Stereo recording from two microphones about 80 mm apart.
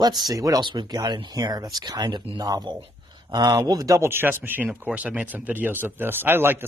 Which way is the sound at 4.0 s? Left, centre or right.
Right.